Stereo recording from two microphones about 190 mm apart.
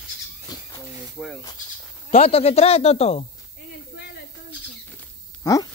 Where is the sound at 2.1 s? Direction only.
35° left (ahead or behind).